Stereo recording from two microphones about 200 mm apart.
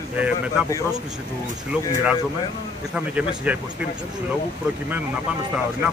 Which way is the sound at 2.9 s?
5° right (ahead or behind).